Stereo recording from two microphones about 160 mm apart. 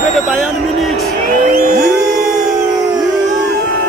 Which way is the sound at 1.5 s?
65° right (ahead or behind).